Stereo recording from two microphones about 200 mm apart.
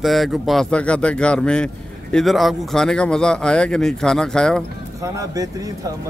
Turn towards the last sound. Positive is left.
turn(degrees=-15)  # may be behind; listen again after turning